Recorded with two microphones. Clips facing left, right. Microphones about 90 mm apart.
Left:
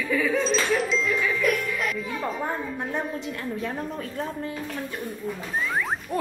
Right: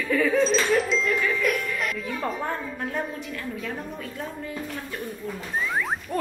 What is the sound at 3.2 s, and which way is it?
A woman's voice, 30° left (ahead or behind).